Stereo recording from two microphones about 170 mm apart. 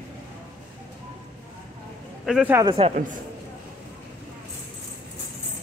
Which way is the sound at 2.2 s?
5° right (ahead or behind).